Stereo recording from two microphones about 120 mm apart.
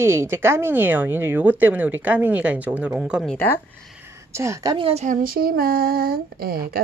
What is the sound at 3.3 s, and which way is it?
Speech, 15° left (ahead or behind).